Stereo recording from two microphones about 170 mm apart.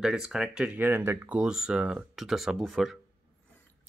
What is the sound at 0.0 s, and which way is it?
Speech, centre (ahead or behind).